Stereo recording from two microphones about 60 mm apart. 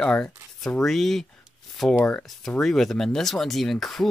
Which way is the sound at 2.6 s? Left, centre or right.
Centre.